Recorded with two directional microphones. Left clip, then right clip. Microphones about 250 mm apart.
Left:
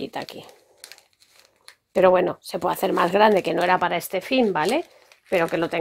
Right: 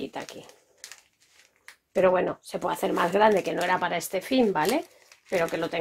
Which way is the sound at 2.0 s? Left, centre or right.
Left.